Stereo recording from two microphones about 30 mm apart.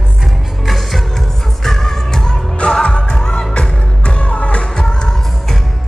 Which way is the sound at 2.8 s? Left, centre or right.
Left.